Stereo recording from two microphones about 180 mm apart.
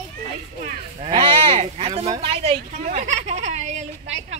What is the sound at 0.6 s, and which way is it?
Speech, 30° right (ahead or behind).